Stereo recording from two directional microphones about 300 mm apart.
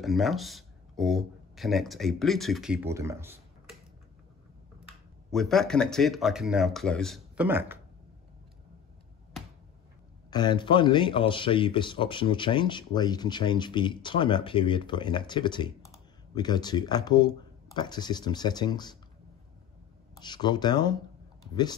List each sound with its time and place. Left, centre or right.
0.0 s speech: centre
5.3 s speech: centre
10.3 s speech: centre
20.2 s speech: centre